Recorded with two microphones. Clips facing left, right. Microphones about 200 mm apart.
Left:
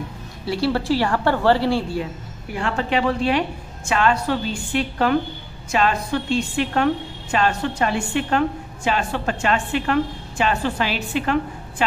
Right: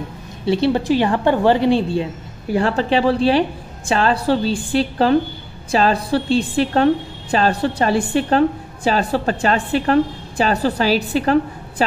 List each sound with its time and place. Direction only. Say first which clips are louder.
0.5 s a woman's voice: right 4 dB; 20° right (ahead or behind)
2.5 s a woman's voice: right 5 dB; 35° right (ahead or behind)